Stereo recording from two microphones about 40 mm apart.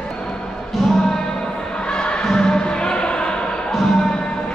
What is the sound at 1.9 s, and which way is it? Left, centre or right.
Music, left.